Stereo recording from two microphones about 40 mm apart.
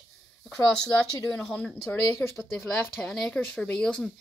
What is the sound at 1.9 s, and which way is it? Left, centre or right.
Speech, left.